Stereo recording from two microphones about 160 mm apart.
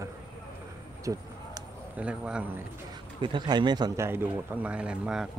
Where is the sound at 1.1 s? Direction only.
20° right (ahead or behind).